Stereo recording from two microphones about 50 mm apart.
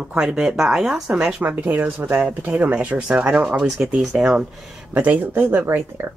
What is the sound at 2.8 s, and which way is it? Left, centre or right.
A woman's voice, right.